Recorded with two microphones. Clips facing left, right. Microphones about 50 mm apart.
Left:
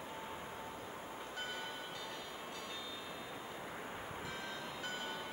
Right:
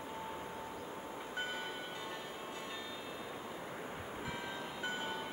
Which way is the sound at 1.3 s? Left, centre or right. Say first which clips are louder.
Right 4 dB; right.